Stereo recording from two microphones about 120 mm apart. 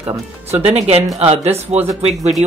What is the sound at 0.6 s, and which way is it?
Speech, 60° right (ahead or behind).